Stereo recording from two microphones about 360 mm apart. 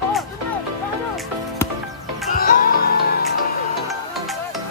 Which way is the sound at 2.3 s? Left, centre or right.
Left.